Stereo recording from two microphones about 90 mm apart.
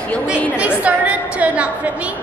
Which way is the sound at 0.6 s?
15° right (ahead or behind).